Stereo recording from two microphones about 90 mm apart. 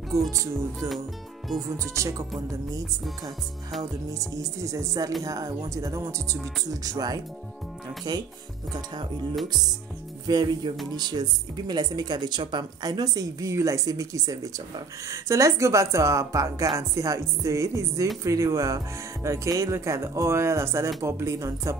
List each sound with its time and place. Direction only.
0.3 s speech: 35° right (ahead or behind)
0.7 s music: centre (ahead or behind)
1.7 s speech: 35° right (ahead or behind)
4.1 s speech: 40° right (ahead or behind)
10.2 s speech: 50° right (ahead or behind); by 21.7 s 35° right (ahead or behind)